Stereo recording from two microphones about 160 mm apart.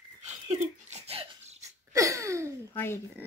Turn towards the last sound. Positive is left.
turn(degrees=15)  # may be behind; listen again after turning